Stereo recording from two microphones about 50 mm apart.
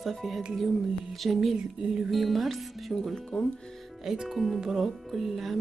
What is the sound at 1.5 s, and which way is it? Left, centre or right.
Speech, centre.